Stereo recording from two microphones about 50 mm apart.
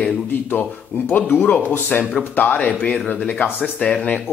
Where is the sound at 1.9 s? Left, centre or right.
Left.